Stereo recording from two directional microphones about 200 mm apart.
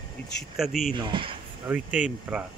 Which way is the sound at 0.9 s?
25° right (ahead or behind).